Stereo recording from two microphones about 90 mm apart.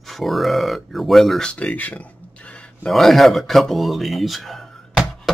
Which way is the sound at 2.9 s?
Centre (ahead or behind).